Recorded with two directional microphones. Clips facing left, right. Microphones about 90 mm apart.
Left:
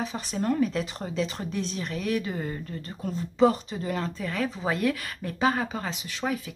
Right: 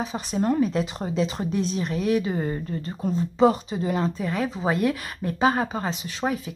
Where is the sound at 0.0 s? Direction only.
20° right (ahead or behind).